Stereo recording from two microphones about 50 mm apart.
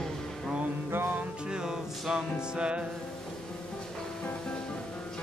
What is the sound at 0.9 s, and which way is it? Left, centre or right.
Music, right.